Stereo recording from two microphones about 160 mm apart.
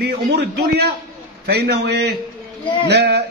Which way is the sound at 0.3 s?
90° right.